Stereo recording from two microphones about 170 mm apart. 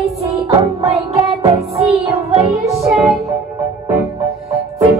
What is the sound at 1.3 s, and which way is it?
Music, 35° right (ahead or behind).